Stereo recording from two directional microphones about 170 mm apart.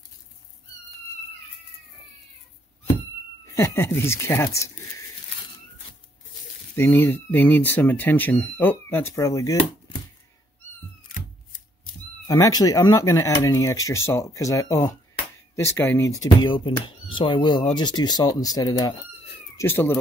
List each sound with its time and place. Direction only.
3.4 s speech: 15° left (ahead or behind)
6.7 s speech: 10° left (ahead or behind)
12.3 s speech: 20° left (ahead or behind)
19.5 s speech: 15° left (ahead or behind)